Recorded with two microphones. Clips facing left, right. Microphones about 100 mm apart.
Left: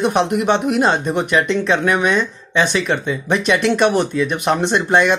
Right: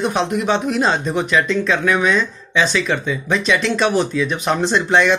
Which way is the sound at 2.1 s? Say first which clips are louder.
Even; 55° left (ahead or behind).